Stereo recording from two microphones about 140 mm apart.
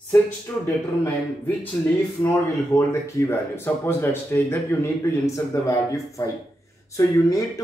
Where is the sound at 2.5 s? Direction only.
20° left (ahead or behind).